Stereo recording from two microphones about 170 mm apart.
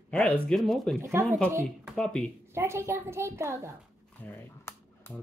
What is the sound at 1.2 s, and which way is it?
Speech, 15° right (ahead or behind).